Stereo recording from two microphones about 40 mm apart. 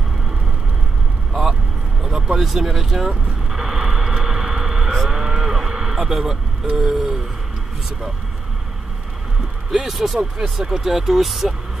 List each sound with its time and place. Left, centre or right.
1.3 s vehicle: centre
2.0 s a sound: centre
2.4 s speech: centre
3.5 s cattle: centre
5.9 s speech: centre
9.7 s speech: centre